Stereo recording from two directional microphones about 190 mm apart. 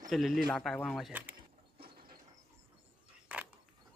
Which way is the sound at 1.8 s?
55° right (ahead or behind).